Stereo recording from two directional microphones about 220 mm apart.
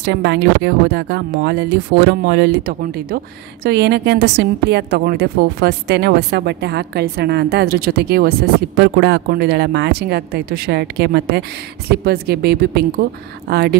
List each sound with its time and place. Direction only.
0.0 s a woman's voice: 50° right (ahead or behind)